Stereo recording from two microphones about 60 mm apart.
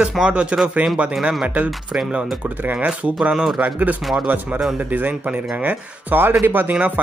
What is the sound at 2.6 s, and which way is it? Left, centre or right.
Speech, right.